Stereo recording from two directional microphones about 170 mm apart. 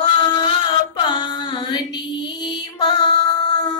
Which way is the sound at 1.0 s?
30° left (ahead or behind).